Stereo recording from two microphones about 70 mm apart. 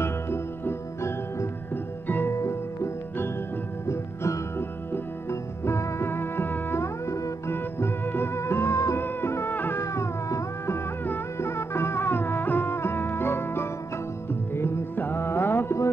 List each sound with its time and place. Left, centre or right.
0.0 s music: left
2.0 s music: left
2.3 s music: left
7.5 s music: left
8.9 s music: left
9.8 s music: left